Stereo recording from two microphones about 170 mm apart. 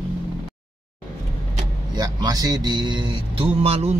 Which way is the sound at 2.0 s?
20° right (ahead or behind).